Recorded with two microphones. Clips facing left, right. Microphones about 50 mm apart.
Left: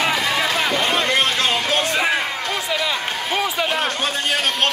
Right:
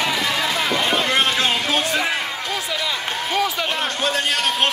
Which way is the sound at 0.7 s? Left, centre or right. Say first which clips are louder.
Right 1 dB; centre.